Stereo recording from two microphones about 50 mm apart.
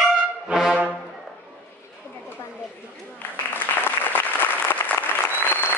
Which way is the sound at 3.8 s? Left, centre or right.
Left.